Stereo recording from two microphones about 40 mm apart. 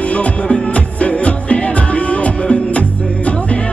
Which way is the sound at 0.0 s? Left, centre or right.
Left.